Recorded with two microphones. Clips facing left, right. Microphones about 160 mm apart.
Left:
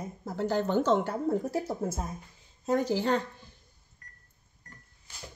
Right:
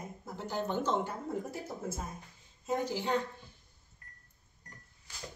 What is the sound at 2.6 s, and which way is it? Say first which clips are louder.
Speech: left 6 dB; 90° left.